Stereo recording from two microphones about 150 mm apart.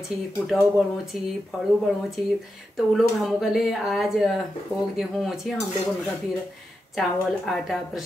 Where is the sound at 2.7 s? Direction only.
Centre (ahead or behind).